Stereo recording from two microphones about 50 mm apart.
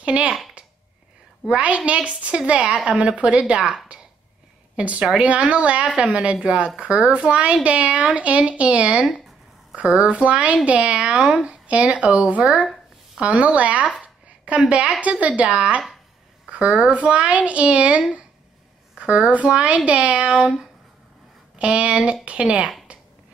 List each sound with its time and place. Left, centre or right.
0.0 s speech: right
1.6 s speech: right
4.7 s speech: right
14.0 s a sound: right
15.0 s speech: right
22.9 s a sound: right